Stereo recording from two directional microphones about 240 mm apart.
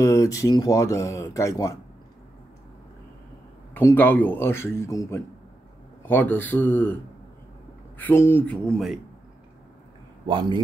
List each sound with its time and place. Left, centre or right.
0.0 s speech: centre
3.7 s speech: centre
8.0 s speech: centre
10.2 s a man's voice: centre